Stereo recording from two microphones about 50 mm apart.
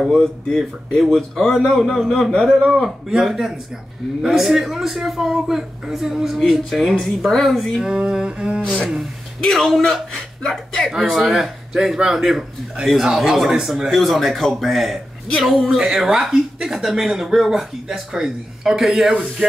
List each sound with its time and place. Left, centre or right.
0.0 s a man's voice: centre
2.0 s a man's voice: centre
7.8 s speech: centre
9.5 s a man's voice: centre